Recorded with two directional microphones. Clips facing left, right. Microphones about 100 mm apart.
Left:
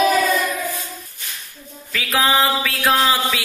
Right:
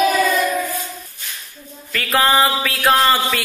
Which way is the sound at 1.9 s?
5° left (ahead or behind).